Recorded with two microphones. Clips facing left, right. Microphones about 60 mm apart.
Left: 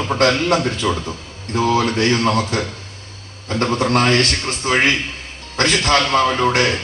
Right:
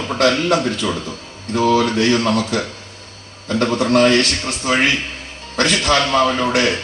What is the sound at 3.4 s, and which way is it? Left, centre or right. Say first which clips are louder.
A man's voice: right 1 dB; left.